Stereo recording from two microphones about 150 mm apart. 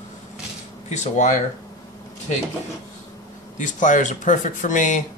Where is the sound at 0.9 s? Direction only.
50° left (ahead or behind).